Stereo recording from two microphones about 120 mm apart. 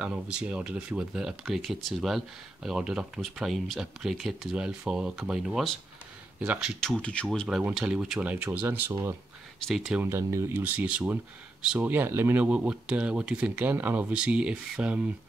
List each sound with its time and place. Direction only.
0.0 s speech: 10° right (ahead or behind)
6.8 s speech: 5° left (ahead or behind)
7.2 s speech: 5° right (ahead or behind)
9.6 s speech: centre (ahead or behind)
10.0 s speech: 20° right (ahead or behind)